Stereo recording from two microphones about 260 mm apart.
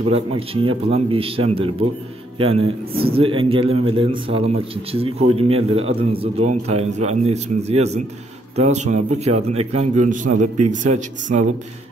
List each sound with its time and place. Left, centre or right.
0.0 s a man's voice: right